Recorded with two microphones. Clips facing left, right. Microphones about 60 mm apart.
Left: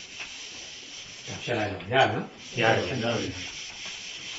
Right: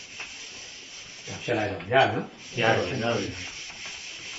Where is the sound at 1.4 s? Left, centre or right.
Centre.